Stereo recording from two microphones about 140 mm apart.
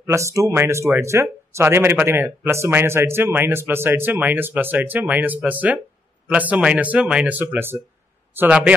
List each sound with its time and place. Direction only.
0.0 s speech: 20° right (ahead or behind)